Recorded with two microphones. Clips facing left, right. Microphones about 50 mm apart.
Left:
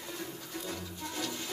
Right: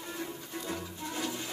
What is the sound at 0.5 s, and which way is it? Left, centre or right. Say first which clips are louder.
Music: right 2 dB; centre.